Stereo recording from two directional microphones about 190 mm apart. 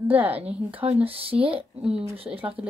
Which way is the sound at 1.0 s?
30° right (ahead or behind).